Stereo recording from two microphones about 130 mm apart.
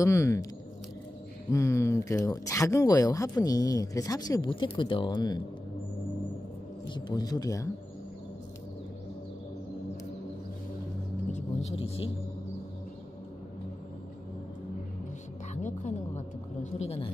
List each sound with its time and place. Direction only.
0.0 s speech: 20° left (ahead or behind)
1.5 s speech: 20° left (ahead or behind)
4.5 s speech: 40° left (ahead or behind)
6.9 s speech: 30° left (ahead or behind)
11.3 s vehicle: 55° left (ahead or behind)
15.5 s music: 65° left (ahead or behind)
16.7 s speech: 55° left (ahead or behind)